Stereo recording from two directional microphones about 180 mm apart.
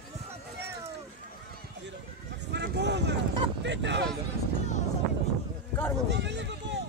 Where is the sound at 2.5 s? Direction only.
70° right (ahead or behind).